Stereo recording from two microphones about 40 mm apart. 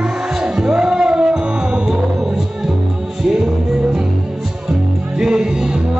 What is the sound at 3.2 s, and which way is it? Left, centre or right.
Music, centre.